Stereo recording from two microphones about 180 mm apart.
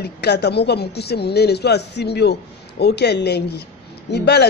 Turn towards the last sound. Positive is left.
turn(degrees=65)  # may be behind; listen again after turning